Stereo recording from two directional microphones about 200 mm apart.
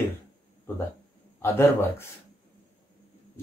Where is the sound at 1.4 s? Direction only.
10° left (ahead or behind).